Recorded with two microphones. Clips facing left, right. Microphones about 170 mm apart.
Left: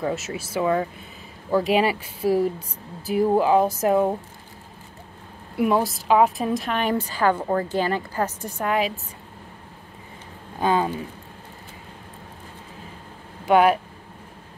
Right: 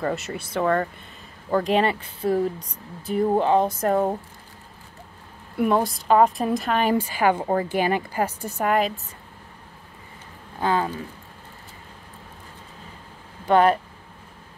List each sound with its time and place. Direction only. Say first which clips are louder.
0.0 s a woman's voice: even; 5° left (ahead or behind)
5.6 s a woman's voice: even; 5° left (ahead or behind)
8.6 s a woman's voice: right 2 dB; centre (ahead or behind)
10.6 s speech: left 2 dB; 15° left (ahead or behind)
13.5 s speech: left 1 dB; 5° left (ahead or behind)